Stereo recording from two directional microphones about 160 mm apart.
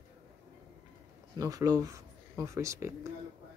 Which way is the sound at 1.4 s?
20° right (ahead or behind).